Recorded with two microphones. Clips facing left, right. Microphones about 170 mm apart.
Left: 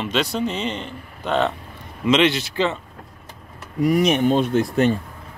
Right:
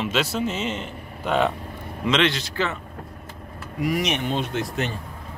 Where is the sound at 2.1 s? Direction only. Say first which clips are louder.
Left 4 dB; 5° left (ahead or behind).